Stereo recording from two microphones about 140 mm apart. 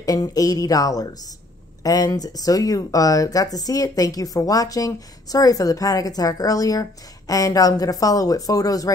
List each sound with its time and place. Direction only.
0.0 s speech: 25° left (ahead or behind)